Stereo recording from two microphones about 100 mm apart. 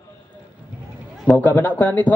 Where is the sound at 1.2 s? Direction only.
15° left (ahead or behind).